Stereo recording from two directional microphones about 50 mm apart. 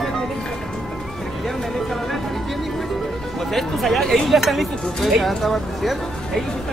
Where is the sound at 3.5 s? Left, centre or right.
Centre.